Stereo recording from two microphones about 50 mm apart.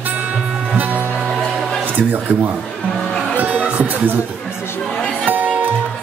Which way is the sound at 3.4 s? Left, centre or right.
Right.